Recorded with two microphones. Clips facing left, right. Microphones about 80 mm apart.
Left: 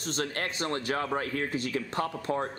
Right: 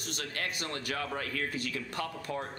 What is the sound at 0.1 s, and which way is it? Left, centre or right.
Speech, left.